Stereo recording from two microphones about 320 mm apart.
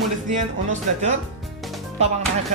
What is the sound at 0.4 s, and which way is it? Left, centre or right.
Speech, right.